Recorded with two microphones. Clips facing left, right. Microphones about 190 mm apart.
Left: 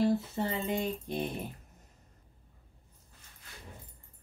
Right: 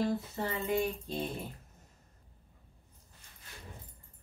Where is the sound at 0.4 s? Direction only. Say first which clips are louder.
Even; 25° left (ahead or behind).